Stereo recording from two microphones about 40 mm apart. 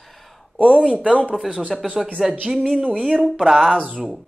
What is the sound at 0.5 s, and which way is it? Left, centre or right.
Speech, right.